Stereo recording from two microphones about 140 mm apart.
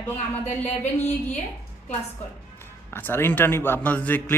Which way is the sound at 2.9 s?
15° left (ahead or behind).